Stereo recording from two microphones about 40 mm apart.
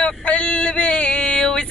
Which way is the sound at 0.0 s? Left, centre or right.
Left.